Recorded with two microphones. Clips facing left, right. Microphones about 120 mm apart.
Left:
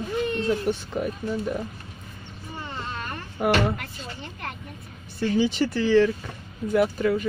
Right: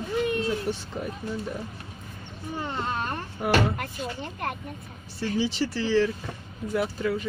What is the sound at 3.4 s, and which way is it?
Speech, 60° left (ahead or behind).